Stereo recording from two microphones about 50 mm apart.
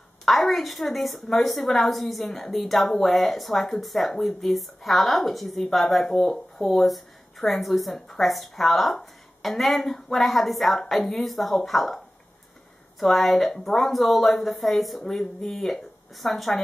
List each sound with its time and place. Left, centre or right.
0.2 s a woman's voice: centre
13.0 s a woman's voice: centre